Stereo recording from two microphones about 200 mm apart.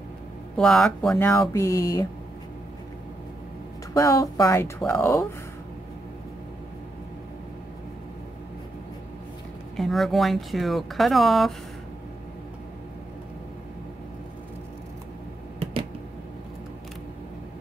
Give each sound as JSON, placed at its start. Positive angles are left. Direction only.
{"t": 0.6, "sound": "speech", "side_deg": 5}
{"t": 3.9, "sound": "speech", "side_deg": 15}
{"t": 9.8, "sound": "speech", "side_deg": 0}